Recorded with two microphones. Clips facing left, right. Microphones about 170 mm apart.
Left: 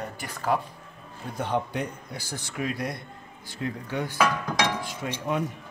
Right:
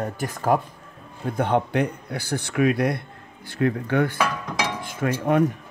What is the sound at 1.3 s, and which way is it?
A man's voice, 55° right (ahead or behind).